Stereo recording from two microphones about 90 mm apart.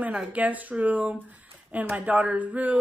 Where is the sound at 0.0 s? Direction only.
15° right (ahead or behind).